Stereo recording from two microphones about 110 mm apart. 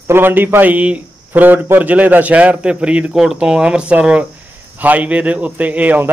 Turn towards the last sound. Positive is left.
turn(degrees=-15)  # may be behind; listen again after turning